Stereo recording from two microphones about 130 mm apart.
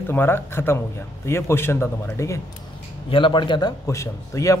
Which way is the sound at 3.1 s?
40° left (ahead or behind).